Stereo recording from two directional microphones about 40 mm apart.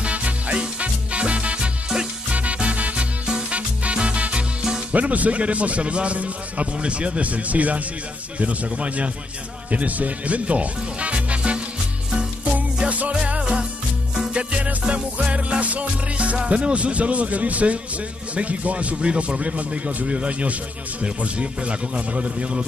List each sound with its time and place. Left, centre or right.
0.0 s music: right
4.9 s a man's voice: right
13.1 s music: right
16.4 s a man's voice: right